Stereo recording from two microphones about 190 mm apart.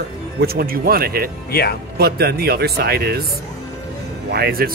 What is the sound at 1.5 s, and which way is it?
Speech, 55° left (ahead or behind).